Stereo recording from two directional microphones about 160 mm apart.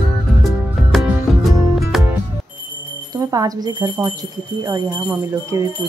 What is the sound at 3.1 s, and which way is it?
Music, 25° right (ahead or behind).